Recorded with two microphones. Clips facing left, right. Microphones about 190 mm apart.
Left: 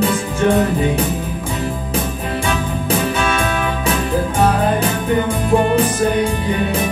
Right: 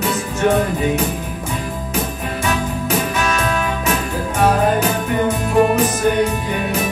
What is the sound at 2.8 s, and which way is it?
Music, 30° left (ahead or behind).